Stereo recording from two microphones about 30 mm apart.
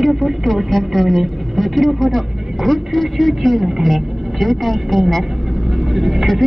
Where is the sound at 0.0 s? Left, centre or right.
Centre.